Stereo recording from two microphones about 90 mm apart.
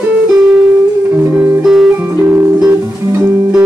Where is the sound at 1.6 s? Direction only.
5° right (ahead or behind).